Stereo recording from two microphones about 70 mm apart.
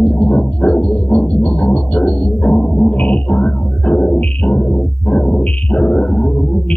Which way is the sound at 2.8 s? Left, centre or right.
Centre.